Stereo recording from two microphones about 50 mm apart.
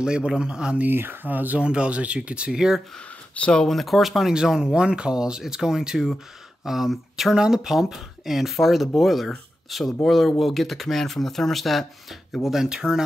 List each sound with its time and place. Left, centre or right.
0.0 s speech: centre
0.8 s speech: right
1.6 s speech: right
3.3 s speech: left
3.6 s speech: centre
4.3 s speech: centre
12.4 s speech: centre